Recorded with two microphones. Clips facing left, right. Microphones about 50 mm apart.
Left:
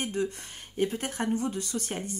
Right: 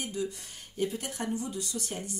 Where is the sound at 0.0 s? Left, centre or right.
Left.